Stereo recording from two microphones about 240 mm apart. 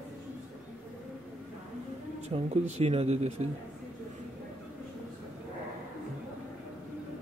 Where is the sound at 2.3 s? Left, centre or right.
Right.